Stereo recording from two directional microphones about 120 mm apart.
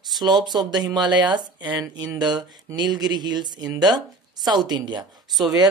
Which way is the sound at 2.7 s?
35° right (ahead or behind).